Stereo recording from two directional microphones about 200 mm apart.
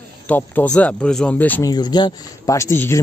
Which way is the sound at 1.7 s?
20° left (ahead or behind).